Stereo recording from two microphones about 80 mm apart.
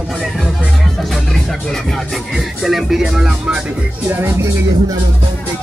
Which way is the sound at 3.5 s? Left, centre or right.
Centre.